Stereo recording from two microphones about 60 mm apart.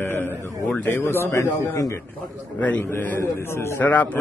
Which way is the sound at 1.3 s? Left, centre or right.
Left.